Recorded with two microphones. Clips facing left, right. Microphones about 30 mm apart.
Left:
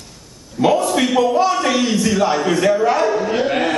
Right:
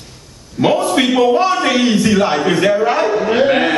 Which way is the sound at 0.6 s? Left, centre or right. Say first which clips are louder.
Right 2 dB; right.